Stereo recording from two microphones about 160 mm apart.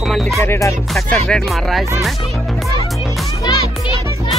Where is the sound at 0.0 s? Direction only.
Centre (ahead or behind).